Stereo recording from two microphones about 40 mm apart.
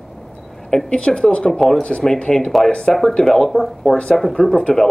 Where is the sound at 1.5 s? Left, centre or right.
Centre.